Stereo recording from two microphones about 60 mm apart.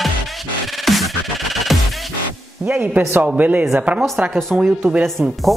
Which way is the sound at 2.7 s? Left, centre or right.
Right.